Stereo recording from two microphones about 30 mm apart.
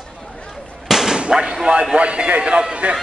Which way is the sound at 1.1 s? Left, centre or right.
Right.